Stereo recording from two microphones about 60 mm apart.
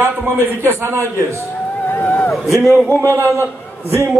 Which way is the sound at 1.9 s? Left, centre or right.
Left.